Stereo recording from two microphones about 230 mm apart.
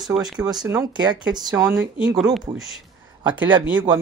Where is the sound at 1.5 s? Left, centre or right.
Centre.